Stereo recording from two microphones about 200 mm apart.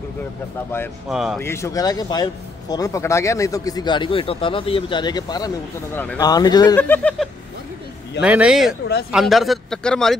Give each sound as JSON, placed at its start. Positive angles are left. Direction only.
{"t": 1.0, "sound": "speech", "side_deg": 0}
{"t": 1.4, "sound": "speech", "side_deg": 15}
{"t": 8.2, "sound": "speech", "side_deg": -5}